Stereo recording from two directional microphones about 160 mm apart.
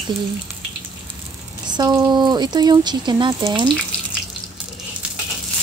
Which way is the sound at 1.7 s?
25° right (ahead or behind).